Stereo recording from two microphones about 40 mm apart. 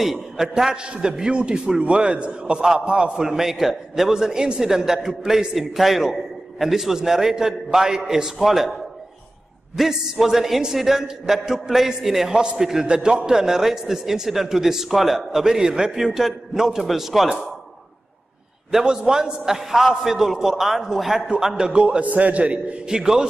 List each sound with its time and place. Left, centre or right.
0.0 s a man's voice: centre
0.8 s a man's voice: right
2.6 s a man's voice: centre
9.8 s a man's voice: centre
12.4 s a man's voice: centre
16.0 s a man's voice: centre
18.7 s a man's voice: centre
21.8 s a man's voice: right
22.8 s a man's voice: centre